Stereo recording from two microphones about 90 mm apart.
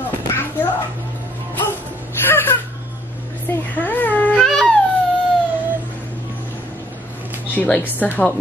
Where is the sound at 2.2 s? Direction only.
25° left (ahead or behind).